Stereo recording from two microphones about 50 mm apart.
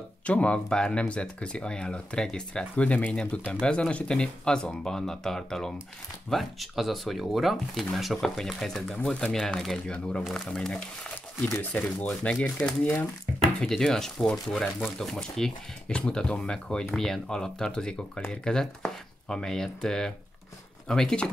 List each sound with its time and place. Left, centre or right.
0.3 s speech: left
6.3 s speech: centre
8.9 s speech: left
11.7 s speech: left
12.1 s speech: left
13.6 s speech: centre